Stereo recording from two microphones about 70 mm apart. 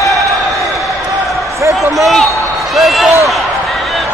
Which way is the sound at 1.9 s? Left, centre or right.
Centre.